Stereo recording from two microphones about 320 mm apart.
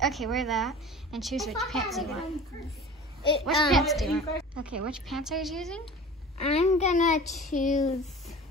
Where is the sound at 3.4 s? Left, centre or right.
Centre.